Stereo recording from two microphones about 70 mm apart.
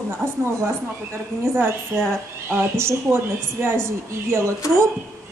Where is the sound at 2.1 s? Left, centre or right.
Right.